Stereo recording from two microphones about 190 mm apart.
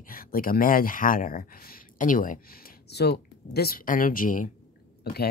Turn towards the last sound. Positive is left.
turn(degrees=55)  # may be behind; listen again after turning